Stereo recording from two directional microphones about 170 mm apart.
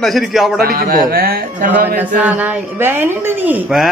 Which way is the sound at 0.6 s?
60° right (ahead or behind).